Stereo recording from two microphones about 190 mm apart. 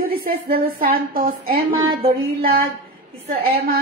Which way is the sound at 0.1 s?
50° right (ahead or behind).